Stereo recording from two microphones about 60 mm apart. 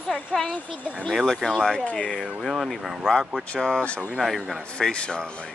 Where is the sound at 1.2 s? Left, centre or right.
Centre.